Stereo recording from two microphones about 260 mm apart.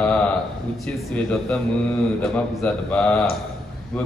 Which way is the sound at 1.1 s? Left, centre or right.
Centre.